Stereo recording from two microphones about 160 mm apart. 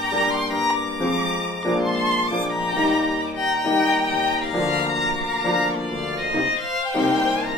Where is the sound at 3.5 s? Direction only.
Centre (ahead or behind).